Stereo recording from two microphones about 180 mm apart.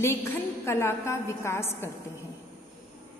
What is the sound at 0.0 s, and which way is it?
A woman's voice, 15° left (ahead or behind).